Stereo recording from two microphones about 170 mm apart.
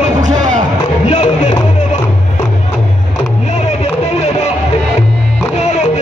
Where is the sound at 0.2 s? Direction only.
50° right (ahead or behind).